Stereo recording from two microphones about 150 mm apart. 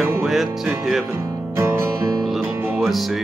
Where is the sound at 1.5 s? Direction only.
15° right (ahead or behind).